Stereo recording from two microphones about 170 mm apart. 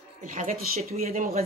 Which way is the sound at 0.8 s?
40° right (ahead or behind).